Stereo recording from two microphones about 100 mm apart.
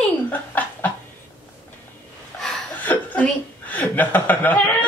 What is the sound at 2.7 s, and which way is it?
Chuckle, 15° left (ahead or behind).